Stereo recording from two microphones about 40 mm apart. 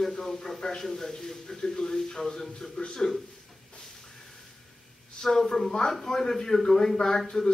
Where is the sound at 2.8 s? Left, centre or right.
Left.